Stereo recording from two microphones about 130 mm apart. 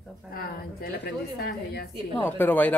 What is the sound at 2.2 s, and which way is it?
Speech, 15° left (ahead or behind).